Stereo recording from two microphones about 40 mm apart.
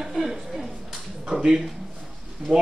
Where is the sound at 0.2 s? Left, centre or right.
Centre.